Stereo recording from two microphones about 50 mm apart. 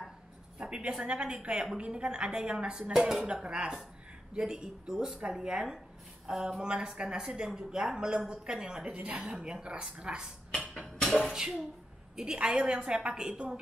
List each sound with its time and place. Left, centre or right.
0.6 s a woman's voice: centre
11.1 s a sound: centre
11.3 s a woman's voice: centre